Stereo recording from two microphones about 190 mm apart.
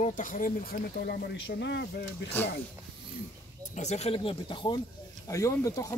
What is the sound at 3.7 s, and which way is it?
Speech, 35° left (ahead or behind).